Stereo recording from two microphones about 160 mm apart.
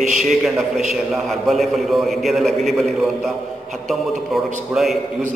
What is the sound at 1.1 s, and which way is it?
A man's voice, centre (ahead or behind).